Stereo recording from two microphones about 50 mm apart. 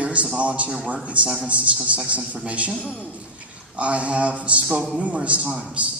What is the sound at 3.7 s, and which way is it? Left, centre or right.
A man's voice, right.